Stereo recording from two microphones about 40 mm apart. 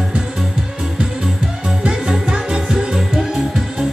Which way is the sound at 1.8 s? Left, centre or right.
Centre.